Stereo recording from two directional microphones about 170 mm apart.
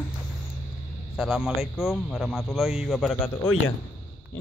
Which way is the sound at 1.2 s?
5° right (ahead or behind).